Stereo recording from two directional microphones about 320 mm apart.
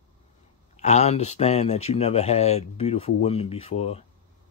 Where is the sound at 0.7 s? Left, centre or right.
Left.